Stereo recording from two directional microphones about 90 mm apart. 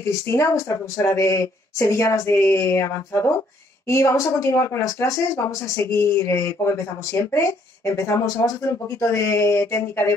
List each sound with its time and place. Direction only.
0.0 s speech: 30° left (ahead or behind)